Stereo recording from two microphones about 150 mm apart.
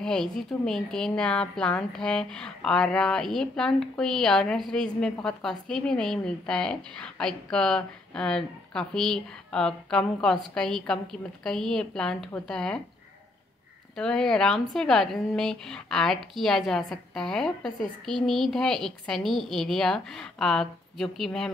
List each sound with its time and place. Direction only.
0.0 s speech: 5° left (ahead or behind)
13.9 s speech: 5° left (ahead or behind)